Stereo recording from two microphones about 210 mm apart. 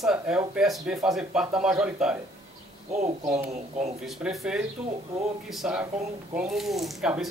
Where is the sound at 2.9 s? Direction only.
30° right (ahead or behind).